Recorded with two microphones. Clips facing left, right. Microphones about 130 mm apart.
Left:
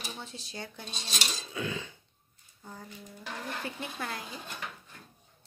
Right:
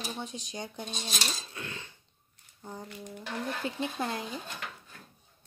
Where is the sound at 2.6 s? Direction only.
20° right (ahead or behind).